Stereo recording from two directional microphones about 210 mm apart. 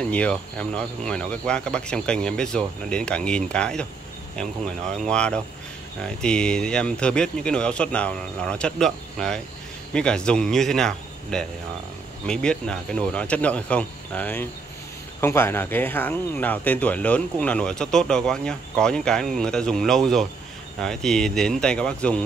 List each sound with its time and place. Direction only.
0.1 s speech: 5° left (ahead or behind)